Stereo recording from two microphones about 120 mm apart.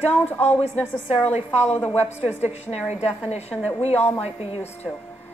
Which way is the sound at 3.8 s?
60° left (ahead or behind).